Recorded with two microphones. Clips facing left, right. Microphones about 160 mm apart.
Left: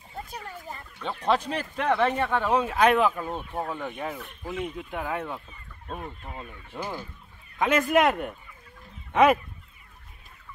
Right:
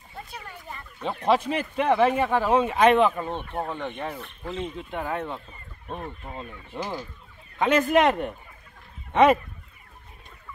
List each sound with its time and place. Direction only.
0.3 s a sound: 40° left (ahead or behind)
1.0 s speech: 5° right (ahead or behind)
6.3 s speech: 15° right (ahead or behind)
7.5 s speech: centre (ahead or behind)